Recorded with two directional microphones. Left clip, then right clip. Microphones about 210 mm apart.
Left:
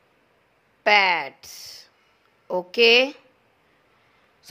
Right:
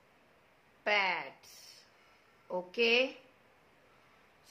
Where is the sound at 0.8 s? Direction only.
45° left (ahead or behind).